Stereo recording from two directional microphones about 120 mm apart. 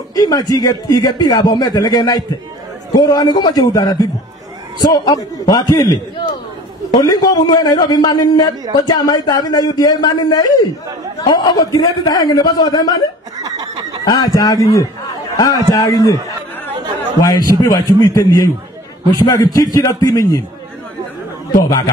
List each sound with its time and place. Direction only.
0.1 s speech: 30° left (ahead or behind)
7.0 s speech: 35° left (ahead or behind)
13.4 s snicker: 30° right (ahead or behind)
14.0 s a man's voice: 30° left (ahead or behind)
17.2 s a man's voice: 30° left (ahead or behind)
21.5 s speech: 30° left (ahead or behind)